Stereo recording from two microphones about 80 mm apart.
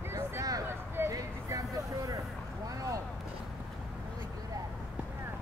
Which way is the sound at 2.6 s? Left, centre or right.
Right.